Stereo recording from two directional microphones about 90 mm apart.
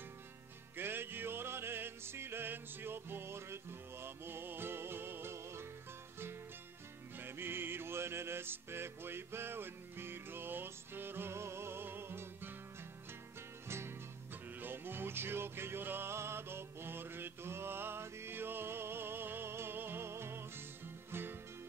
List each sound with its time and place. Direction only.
0.7 s music: 25° right (ahead or behind)
7.2 s music: 25° right (ahead or behind)
13.7 s music: 30° right (ahead or behind)